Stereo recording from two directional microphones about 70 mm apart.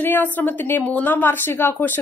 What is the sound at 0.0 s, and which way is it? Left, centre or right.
Speech, left.